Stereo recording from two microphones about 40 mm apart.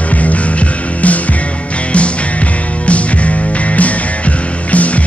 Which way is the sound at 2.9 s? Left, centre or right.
Left.